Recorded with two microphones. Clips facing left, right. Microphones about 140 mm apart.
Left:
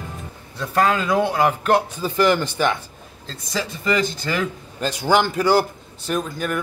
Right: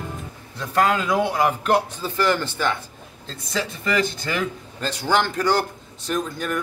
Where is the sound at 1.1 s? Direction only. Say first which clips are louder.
Left 2 dB; 10° right (ahead or behind).